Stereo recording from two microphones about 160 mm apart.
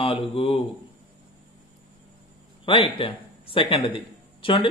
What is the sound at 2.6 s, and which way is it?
Speech, 35° left (ahead or behind).